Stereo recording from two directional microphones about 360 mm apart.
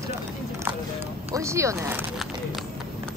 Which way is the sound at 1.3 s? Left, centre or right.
Centre.